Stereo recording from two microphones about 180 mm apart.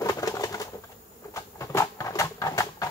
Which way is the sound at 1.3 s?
15° left (ahead or behind).